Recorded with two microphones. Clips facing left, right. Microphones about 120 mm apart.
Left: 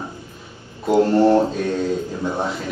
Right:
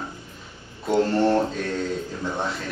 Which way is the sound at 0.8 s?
5° left (ahead or behind).